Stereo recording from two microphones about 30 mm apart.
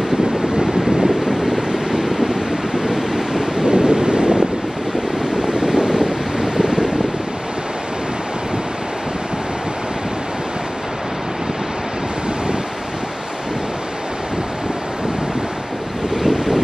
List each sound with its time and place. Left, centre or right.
1.0 s a sound: centre
2.2 s waves: centre
5.4 s wind: right
16.2 s waves: centre